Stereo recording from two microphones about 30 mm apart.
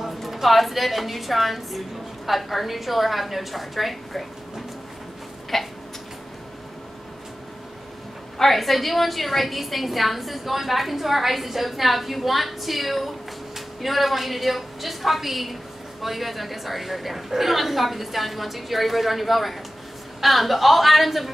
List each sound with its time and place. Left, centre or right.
0.2 s a woman's voice: centre
5.5 s a sound: centre
8.4 s a woman's voice: centre